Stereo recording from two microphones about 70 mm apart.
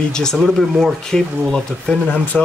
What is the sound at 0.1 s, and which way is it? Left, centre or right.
Speech, centre.